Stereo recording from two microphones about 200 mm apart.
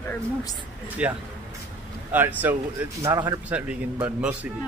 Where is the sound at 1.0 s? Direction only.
5° right (ahead or behind).